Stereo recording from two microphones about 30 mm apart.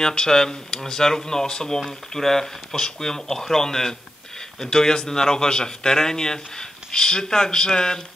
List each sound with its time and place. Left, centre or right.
0.0 s speech: left
1.9 s speech: centre